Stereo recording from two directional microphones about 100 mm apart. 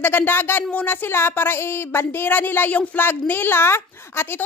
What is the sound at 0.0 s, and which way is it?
Speech, 20° left (ahead or behind).